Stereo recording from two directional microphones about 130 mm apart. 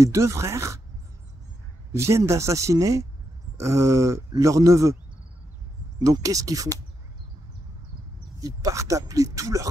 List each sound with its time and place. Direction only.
0.0 s speech: 25° right (ahead or behind)
1.9 s speech: 20° right (ahead or behind)
5.9 s speech: 30° right (ahead or behind)
8.4 s speech: 25° right (ahead or behind)